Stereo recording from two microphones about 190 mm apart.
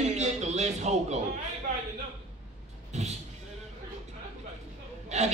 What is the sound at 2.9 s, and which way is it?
Speech, 35° right (ahead or behind).